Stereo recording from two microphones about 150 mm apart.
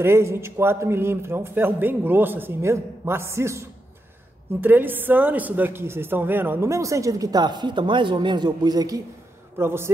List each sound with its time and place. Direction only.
0.0 s a man's voice: 15° right (ahead or behind)